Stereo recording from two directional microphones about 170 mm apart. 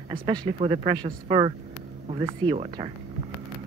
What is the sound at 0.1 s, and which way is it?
Speech, 25° right (ahead or behind).